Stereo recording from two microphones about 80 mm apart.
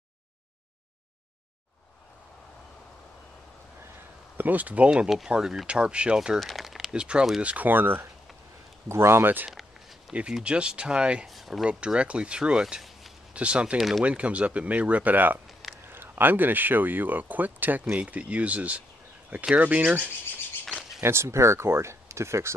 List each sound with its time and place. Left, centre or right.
4.4 s speech: right
4.9 s speech: centre
7.4 s speech: right
9.5 s a sound: centre
10.3 s speech: centre
11.2 s speech: centre
11.6 s speech: centre
13.7 s speech: centre
14.0 s speech: centre
20.6 s a sound: centre
21.0 s speech: right